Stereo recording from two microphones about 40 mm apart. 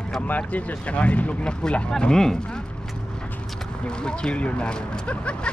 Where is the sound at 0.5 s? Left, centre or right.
Left.